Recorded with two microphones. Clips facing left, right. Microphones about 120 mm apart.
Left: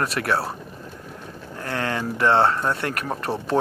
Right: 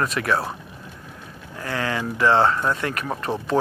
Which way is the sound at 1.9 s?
50° left (ahead or behind).